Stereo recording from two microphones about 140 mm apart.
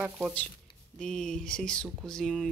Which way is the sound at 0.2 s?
10° left (ahead or behind).